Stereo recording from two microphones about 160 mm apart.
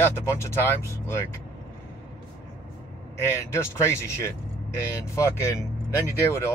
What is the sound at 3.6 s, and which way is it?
Speech, 15° left (ahead or behind).